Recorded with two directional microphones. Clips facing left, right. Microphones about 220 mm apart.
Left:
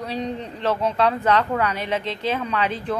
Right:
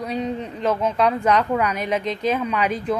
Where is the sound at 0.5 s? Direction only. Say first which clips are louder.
Right 1 dB; 10° right (ahead or behind).